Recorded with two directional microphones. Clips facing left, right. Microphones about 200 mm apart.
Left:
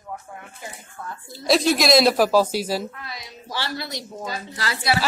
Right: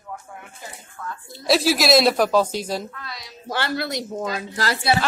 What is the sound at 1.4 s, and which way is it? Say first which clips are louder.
Speech: even; 5° right (ahead or behind).